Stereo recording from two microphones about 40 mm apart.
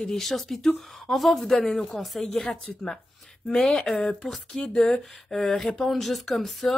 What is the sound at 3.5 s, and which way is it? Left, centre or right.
Speech, left.